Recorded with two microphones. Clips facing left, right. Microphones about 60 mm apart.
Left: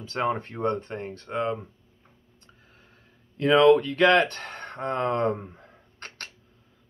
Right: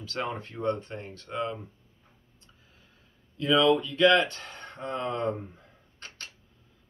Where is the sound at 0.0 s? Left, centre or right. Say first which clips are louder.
Left 6 dB; left.